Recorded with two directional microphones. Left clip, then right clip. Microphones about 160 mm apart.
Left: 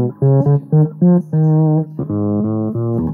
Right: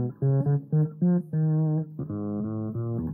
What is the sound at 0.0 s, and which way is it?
Music, 30° left (ahead or behind).